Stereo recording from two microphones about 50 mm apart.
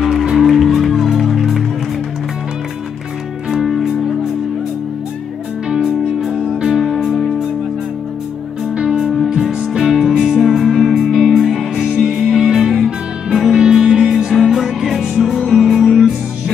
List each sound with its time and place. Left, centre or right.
0.0 s music: centre
3.4 s music: centre
5.7 s music: centre
6.2 s music: centre
7.1 s music: centre
8.7 s music: centre
9.0 s music: centre
9.3 s music: centre